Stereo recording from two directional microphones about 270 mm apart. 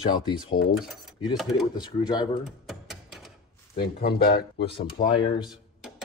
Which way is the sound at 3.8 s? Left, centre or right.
Left.